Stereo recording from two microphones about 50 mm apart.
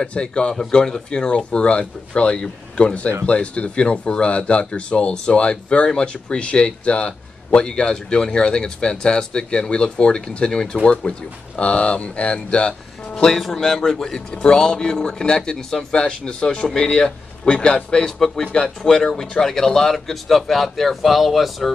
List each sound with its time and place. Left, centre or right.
0.0 s a man's voice: centre